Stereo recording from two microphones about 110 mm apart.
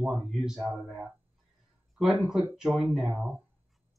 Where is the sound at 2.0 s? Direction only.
5° right (ahead or behind).